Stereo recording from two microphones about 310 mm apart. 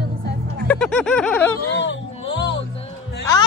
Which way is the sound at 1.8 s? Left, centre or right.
Left.